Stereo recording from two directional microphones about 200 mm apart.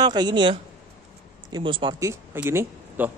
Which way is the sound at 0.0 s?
20° right (ahead or behind).